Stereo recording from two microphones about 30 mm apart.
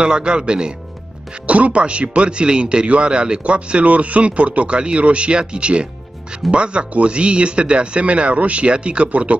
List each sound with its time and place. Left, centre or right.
0.0 s speech: right
1.5 s speech: right
9.1 s speech: right